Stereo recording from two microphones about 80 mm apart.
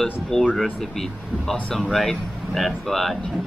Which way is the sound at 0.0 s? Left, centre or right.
Centre.